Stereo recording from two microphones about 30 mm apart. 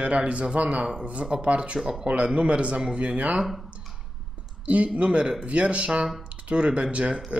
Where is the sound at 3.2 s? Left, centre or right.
Right.